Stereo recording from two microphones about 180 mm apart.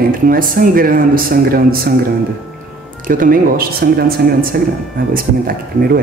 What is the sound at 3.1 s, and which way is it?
Speech, 50° right (ahead or behind).